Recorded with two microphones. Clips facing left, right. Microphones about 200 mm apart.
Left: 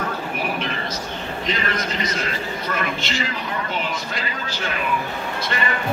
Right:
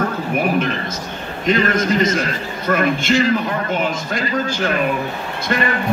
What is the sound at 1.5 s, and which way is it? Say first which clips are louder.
A man's voice: right 11 dB; 50° right (ahead or behind).